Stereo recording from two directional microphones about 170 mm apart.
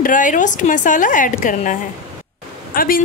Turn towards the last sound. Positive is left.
turn(degrees=55)  # may be behind; listen again after turning